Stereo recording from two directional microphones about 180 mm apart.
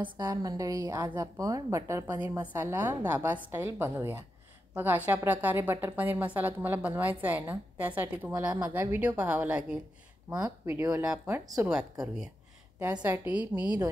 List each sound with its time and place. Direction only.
0.2 s a woman's voice: 20° right (ahead or behind)
11.7 s speech: 5° right (ahead or behind)
12.7 s a woman's voice: 15° right (ahead or behind)